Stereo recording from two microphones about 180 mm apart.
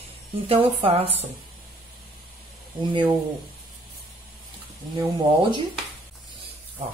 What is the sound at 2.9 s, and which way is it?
Speech, 25° right (ahead or behind).